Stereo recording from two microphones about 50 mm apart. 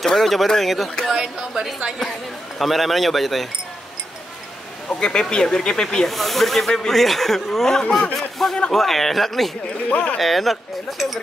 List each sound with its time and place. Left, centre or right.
0.0 s speech: centre
1.0 s speech: centre
5.0 s speech: centre
9.8 s speech: left
10.1 s speech: centre